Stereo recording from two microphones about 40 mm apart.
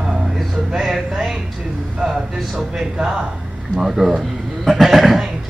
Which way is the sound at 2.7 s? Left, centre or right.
Centre.